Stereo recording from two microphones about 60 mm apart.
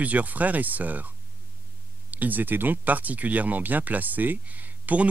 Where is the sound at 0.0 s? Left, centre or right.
Right.